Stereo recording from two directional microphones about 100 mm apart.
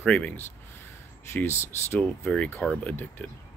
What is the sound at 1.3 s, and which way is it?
Speech, 25° left (ahead or behind).